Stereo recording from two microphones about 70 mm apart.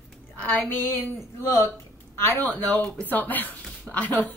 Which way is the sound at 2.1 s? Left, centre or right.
Left.